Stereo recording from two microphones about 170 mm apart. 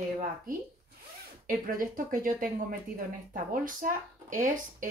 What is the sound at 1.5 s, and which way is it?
Speech, 55° right (ahead or behind).